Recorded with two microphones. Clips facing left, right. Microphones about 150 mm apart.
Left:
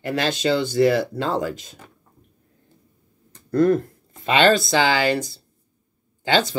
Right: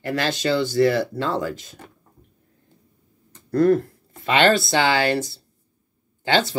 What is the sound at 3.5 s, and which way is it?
Speech, 20° left (ahead or behind).